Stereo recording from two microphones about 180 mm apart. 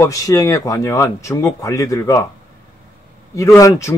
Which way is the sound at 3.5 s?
15° left (ahead or behind).